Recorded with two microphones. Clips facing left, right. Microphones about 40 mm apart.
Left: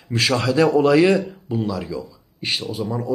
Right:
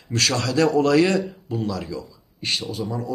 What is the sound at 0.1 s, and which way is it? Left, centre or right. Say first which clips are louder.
Speech: left 3 dB; centre.